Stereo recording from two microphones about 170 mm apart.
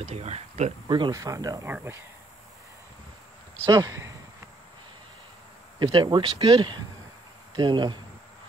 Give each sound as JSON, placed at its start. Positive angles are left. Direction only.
{"t": 0.0, "sound": "speech", "side_deg": -40}
{"t": 0.8, "sound": "speech", "side_deg": -25}
{"t": 3.6, "sound": "speech", "side_deg": -20}
{"t": 5.8, "sound": "speech", "side_deg": -25}